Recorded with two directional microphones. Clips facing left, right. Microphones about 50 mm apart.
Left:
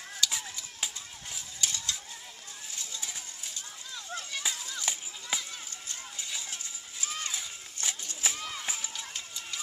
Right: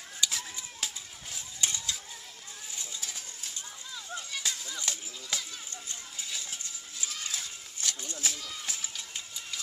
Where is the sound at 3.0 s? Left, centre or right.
Centre.